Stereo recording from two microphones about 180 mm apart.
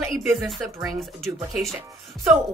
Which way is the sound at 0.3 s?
Centre (ahead or behind).